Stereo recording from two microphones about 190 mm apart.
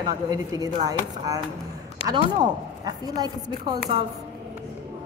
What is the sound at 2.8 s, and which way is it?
A woman's voice, 20° right (ahead or behind).